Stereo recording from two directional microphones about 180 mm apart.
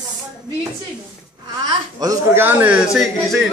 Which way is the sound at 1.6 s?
20° right (ahead or behind).